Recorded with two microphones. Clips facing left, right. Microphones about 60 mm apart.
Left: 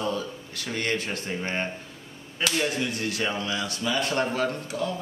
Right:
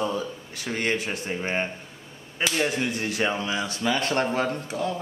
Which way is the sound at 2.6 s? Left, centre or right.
Right.